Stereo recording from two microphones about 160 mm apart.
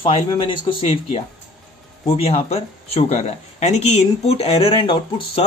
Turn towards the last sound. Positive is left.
turn(degrees=35)  # may be behind; listen again after turning